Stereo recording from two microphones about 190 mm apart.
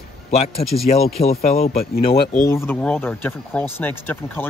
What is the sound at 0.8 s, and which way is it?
Speech, 35° left (ahead or behind).